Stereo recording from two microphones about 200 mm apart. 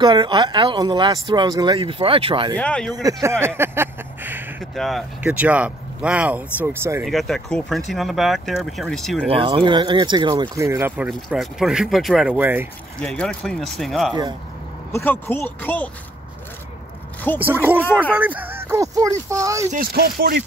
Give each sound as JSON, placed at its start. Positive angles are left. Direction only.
{"t": 0.0, "sound": "speech", "side_deg": -25}
{"t": 2.5, "sound": "speech", "side_deg": 5}
{"t": 2.9, "sound": "speech", "side_deg": -15}
{"t": 7.1, "sound": "speech", "side_deg": 0}
{"t": 9.3, "sound": "speech", "side_deg": -30}
{"t": 11.1, "sound": "speech", "side_deg": 0}
{"t": 13.0, "sound": "speech", "side_deg": 5}
{"t": 14.9, "sound": "speech", "side_deg": 10}
{"t": 17.4, "sound": "speech", "side_deg": -10}
{"t": 17.8, "sound": "speech", "side_deg": 10}
{"t": 18.1, "sound": "speech", "side_deg": -10}
{"t": 19.7, "sound": "speech", "side_deg": -45}